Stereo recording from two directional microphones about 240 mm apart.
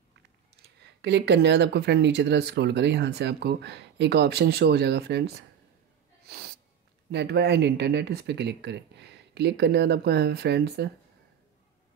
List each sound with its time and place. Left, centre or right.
0.6 s speech: right
6.2 s sneeze: right
7.1 s speech: right